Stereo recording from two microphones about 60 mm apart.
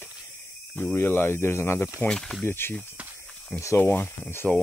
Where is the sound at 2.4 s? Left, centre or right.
Left.